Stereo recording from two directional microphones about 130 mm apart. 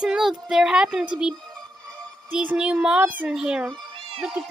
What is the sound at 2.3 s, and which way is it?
A child's voice, 10° right (ahead or behind).